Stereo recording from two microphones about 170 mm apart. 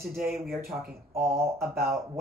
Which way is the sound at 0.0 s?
60° right (ahead or behind).